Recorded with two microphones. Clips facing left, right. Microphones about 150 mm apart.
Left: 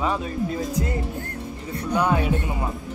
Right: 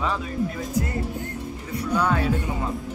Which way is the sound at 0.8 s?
20° left (ahead or behind).